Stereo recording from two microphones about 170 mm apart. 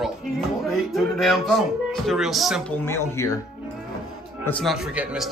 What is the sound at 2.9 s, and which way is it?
Speech, 15° left (ahead or behind).